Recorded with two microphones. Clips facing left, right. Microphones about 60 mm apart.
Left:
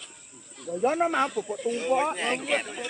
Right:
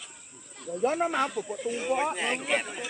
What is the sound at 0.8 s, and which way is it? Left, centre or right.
Speech, left.